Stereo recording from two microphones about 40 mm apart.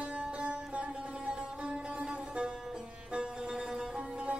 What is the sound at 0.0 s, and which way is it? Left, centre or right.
Music, right.